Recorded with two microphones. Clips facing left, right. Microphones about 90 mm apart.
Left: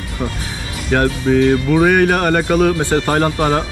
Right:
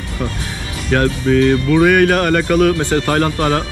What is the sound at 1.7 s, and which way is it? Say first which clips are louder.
Speech: right 1 dB; 40° left (ahead or behind).